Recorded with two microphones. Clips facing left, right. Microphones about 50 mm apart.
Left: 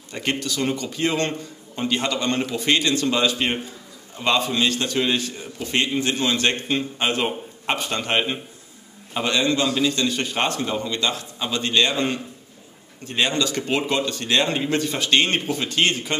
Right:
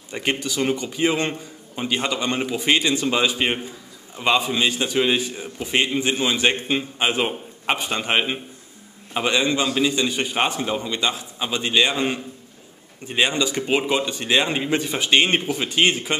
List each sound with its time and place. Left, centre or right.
0.1 s a man's voice: centre